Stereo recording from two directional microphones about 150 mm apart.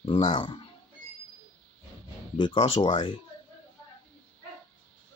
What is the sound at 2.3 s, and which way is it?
Speech, 35° left (ahead or behind).